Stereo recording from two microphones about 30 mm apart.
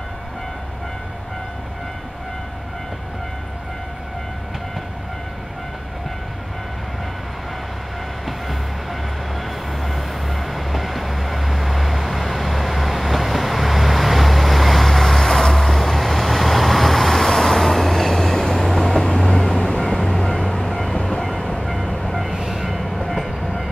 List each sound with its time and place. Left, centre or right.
9.4 s train: centre
19.9 s vehicle: left
20.5 s vehicle: centre
20.9 s train: left
22.0 s train: centre
22.3 s train: centre
22.8 s train: centre